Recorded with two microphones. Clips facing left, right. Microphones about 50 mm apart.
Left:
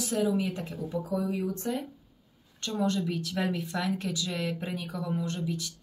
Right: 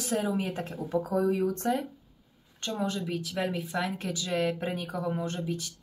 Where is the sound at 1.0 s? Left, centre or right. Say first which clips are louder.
Right 4 dB; right.